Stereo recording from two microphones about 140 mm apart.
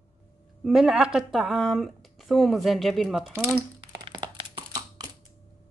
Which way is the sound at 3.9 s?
35° right (ahead or behind).